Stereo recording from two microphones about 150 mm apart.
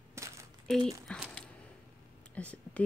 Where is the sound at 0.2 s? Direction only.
20° right (ahead or behind).